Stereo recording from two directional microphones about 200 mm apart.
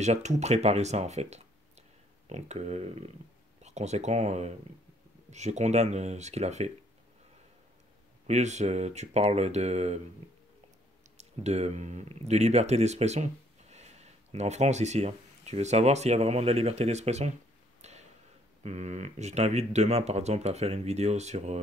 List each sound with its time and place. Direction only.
0.0 s speech: 35° right (ahead or behind)
8.3 s speech: 35° right (ahead or behind)
11.1 s speech: 35° right (ahead or behind)
17.8 s a sound: 35° right (ahead or behind)
18.6 s speech: 35° right (ahead or behind)